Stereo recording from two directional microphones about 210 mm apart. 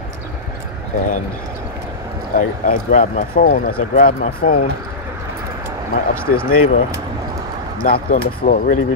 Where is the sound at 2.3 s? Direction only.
40° left (ahead or behind).